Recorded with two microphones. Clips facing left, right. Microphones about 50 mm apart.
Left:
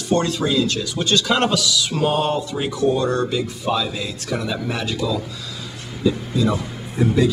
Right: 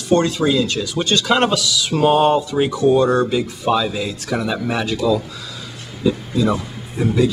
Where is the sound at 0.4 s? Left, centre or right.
Centre.